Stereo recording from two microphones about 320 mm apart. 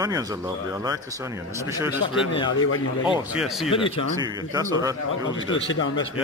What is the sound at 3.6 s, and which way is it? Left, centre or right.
Speech, centre.